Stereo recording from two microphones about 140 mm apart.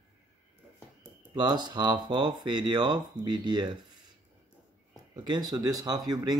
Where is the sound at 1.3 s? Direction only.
30° right (ahead or behind).